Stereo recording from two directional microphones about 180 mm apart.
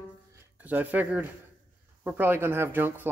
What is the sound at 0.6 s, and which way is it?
Speech, 10° right (ahead or behind).